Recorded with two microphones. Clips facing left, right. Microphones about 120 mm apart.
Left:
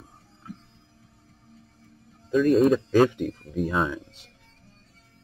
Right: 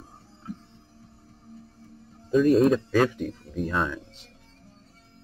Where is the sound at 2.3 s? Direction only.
Centre (ahead or behind).